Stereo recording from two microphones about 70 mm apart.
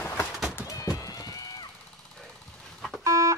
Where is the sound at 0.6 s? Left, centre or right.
Left.